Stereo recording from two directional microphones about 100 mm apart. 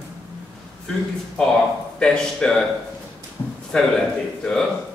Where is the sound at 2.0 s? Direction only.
10° left (ahead or behind).